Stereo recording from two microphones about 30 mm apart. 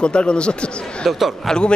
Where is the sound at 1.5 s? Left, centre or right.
Centre.